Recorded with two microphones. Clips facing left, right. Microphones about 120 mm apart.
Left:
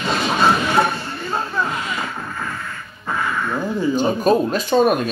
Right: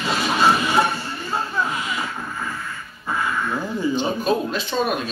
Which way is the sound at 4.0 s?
45° left (ahead or behind).